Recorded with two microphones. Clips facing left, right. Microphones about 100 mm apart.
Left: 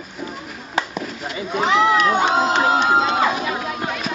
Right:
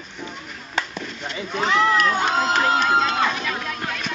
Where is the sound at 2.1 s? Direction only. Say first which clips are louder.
Left 4 dB; 20° left (ahead or behind).